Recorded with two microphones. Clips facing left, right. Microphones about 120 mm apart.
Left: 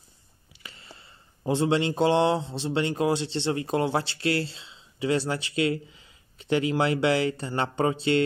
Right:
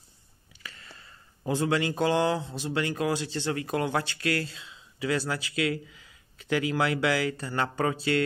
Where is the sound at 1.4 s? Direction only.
25° left (ahead or behind).